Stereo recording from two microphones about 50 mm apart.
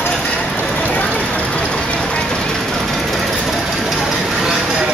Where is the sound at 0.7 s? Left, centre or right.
Left.